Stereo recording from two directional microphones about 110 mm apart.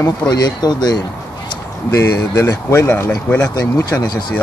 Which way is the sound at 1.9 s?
25° left (ahead or behind).